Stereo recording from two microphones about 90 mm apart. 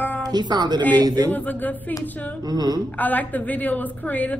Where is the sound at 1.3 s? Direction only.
20° left (ahead or behind).